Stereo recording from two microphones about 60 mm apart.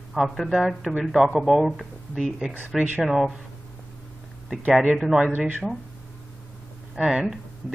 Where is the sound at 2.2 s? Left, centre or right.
Centre.